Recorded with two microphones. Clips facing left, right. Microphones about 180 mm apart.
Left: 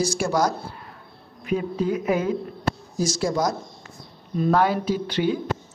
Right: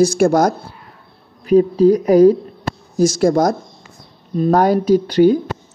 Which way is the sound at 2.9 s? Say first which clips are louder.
Right 11 dB; 50° right (ahead or behind).